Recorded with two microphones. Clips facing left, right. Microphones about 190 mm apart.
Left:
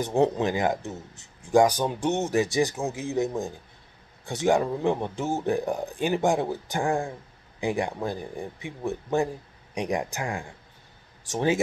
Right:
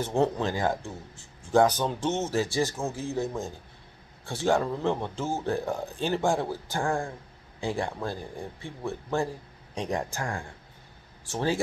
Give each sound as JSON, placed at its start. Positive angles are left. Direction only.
{"t": 0.0, "sound": "speech", "side_deg": 15}